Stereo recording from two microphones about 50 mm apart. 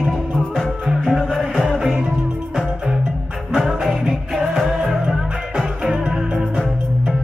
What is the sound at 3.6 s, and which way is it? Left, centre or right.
Music, centre.